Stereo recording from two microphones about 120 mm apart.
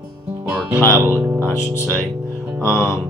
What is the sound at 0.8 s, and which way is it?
Speech, 20° left (ahead or behind).